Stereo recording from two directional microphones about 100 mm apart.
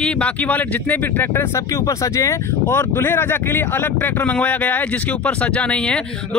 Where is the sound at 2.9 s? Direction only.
20° left (ahead or behind).